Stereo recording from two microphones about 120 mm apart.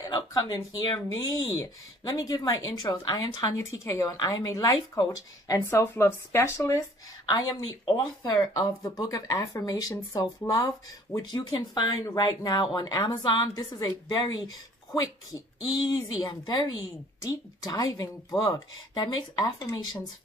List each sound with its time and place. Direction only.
0.0 s speech: 35° left (ahead or behind)
7.2 s speech: 35° left (ahead or behind)
15.9 s speech: 30° left (ahead or behind)